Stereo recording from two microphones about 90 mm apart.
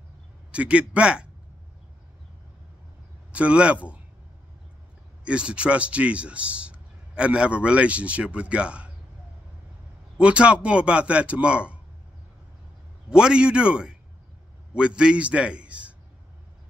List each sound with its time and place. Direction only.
0.5 s speech: 15° right (ahead or behind)
3.3 s speech: 10° right (ahead or behind)
5.2 s speech: 10° right (ahead or behind)
10.1 s speech: 10° right (ahead or behind)
13.1 s speech: 10° right (ahead or behind)